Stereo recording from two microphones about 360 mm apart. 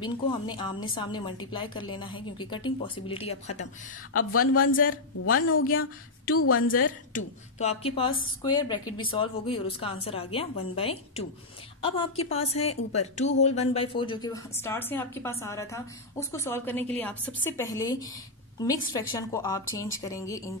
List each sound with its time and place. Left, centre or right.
0.0 s a woman's voice: centre
4.3 s a woman's voice: left
4.6 s a man's voice: left
5.2 s a woman's voice: left
5.6 s a man's voice: left
6.3 s a woman's voice: left
7.1 s a woman's voice: centre